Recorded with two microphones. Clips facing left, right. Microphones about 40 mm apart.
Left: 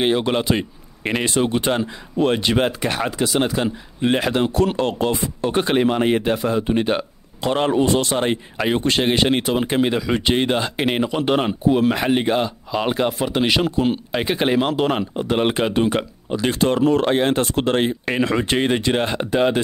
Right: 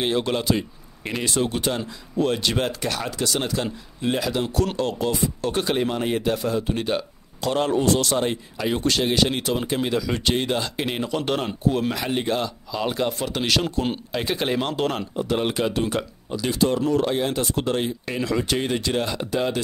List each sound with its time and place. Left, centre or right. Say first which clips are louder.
0.0 s speech: left 4 dB; left
4.0 s speech: left 5 dB; left